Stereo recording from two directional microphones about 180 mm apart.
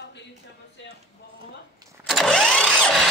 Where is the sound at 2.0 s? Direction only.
Centre (ahead or behind).